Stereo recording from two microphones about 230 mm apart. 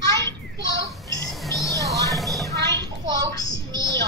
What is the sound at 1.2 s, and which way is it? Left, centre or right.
Music, centre.